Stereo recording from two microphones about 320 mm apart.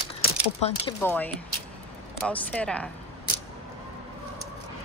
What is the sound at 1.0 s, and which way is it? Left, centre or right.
Speech, centre.